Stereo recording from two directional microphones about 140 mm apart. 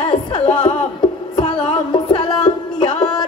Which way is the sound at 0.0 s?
35° left (ahead or behind).